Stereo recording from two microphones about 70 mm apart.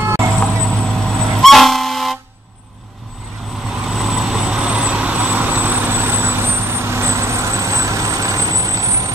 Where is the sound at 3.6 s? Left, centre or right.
Centre.